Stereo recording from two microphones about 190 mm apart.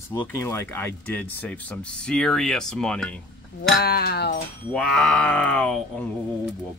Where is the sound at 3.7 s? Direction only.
55° left (ahead or behind).